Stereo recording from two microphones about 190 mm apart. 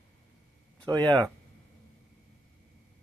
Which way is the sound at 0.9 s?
20° right (ahead or behind).